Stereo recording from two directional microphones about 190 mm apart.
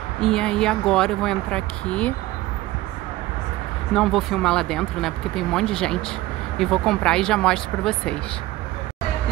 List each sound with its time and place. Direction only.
0.2 s speech: 5° left (ahead or behind)
3.9 s speech: centre (ahead or behind)